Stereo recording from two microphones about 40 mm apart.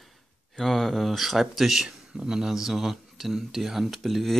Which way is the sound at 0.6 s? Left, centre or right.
Centre.